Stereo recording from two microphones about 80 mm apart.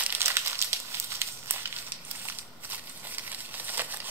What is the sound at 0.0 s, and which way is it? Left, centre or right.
Crumpling, right.